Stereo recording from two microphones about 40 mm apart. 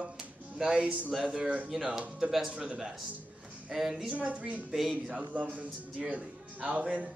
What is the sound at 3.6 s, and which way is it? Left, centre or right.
Speech, centre.